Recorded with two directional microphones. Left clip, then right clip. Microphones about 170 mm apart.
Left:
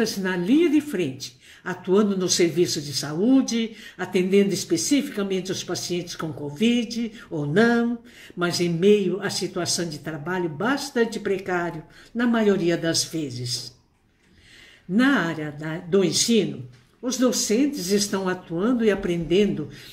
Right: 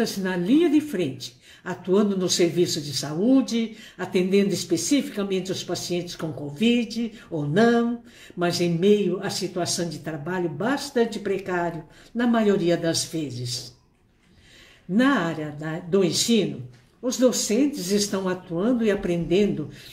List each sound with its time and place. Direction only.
0.0 s speech: 15° left (ahead or behind)
7.5 s a sound: 20° left (ahead or behind)
8.4 s speech: 20° left (ahead or behind)
15.0 s speech: 20° left (ahead or behind)